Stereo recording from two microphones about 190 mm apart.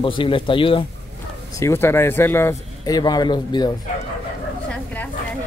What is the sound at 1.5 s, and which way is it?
A man's voice, 15° left (ahead or behind).